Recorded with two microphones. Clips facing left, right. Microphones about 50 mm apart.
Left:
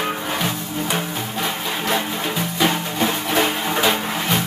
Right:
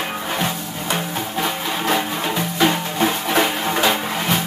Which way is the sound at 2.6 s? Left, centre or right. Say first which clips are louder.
Right 2 dB; centre.